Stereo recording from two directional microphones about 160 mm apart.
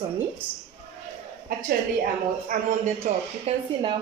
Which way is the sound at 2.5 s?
55° right (ahead or behind).